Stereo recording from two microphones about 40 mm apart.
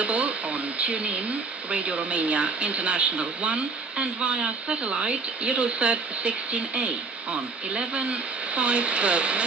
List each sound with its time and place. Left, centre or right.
0.0 s speech: right